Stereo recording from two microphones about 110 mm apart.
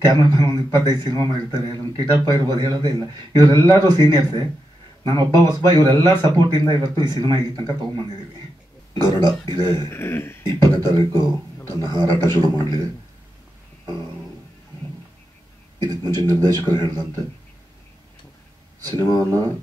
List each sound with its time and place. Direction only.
0.1 s a man's voice: 40° right (ahead or behind)
9.8 s speech: 20° left (ahead or behind)
10.4 s speech: 40° right (ahead or behind)
15.8 s speech: 40° right (ahead or behind)
19.0 s speech: 40° right (ahead or behind)